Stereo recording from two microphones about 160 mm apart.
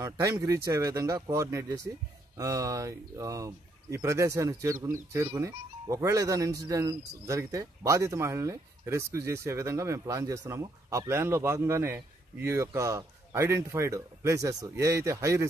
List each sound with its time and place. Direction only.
0.0 s speech: 20° right (ahead or behind)